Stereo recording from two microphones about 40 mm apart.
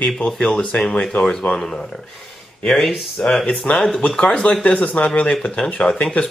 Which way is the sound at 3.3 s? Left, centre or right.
Left.